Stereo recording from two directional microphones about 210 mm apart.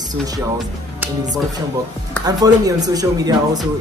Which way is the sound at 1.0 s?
20° right (ahead or behind).